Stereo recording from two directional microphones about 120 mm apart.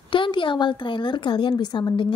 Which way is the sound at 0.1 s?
45° left (ahead or behind).